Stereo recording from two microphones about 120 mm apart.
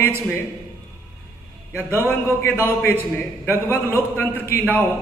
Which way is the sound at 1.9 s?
20° left (ahead or behind).